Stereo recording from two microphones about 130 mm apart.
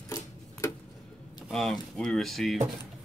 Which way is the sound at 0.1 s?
20° left (ahead or behind).